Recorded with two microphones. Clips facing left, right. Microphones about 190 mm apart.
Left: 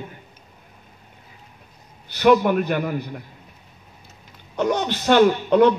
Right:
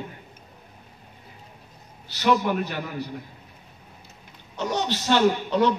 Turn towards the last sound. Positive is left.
turn(degrees=55)  # may be behind; listen again after turning